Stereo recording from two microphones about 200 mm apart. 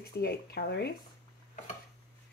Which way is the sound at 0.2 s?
50° left (ahead or behind).